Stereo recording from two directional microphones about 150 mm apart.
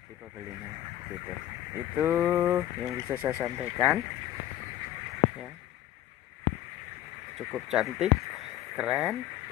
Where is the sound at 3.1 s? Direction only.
15° right (ahead or behind).